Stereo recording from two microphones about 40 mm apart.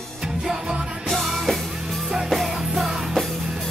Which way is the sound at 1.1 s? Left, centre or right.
Centre.